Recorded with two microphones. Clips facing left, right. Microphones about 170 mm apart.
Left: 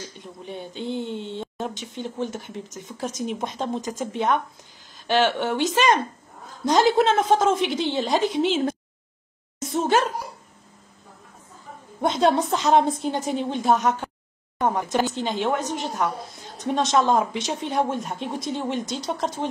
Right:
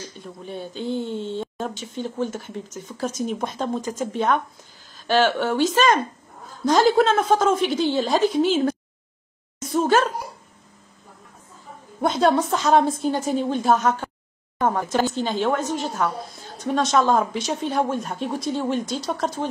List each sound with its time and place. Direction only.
0.5 s speech: 20° left (ahead or behind)
9.6 s a sound: 25° left (ahead or behind)
12.0 s speech: 25° left (ahead or behind)